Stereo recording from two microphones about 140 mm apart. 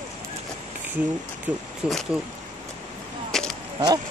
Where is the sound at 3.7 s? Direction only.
30° right (ahead or behind).